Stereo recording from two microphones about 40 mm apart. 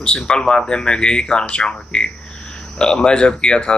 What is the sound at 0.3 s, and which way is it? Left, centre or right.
Speech, left.